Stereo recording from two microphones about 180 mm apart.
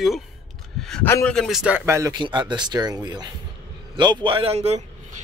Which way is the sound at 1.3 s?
Centre (ahead or behind).